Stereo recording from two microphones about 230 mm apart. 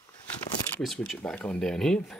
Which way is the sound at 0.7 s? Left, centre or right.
Centre.